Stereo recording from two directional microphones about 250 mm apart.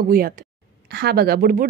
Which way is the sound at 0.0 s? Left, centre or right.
Right.